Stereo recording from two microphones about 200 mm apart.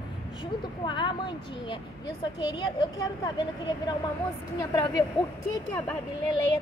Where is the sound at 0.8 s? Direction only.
25° left (ahead or behind).